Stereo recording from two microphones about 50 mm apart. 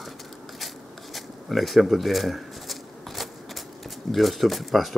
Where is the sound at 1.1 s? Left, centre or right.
Centre.